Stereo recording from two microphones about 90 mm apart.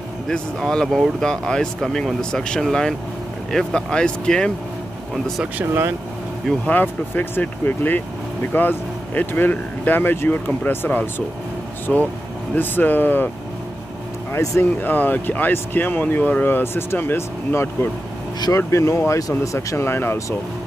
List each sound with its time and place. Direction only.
0.3 s speech: 5° left (ahead or behind)
6.6 s speech: 20° left (ahead or behind)
11.9 s speech: 10° left (ahead or behind)
12.5 s speech: 20° left (ahead or behind)
14.3 s speech: 25° left (ahead or behind)